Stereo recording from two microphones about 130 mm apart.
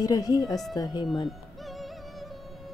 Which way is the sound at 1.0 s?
Centre (ahead or behind).